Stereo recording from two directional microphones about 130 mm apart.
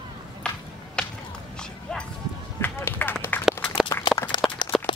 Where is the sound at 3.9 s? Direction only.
25° left (ahead or behind).